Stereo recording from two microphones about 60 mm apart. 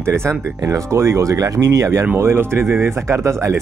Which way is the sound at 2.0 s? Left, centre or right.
Right.